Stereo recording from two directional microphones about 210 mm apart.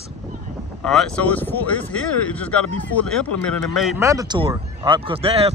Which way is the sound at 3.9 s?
15° right (ahead or behind).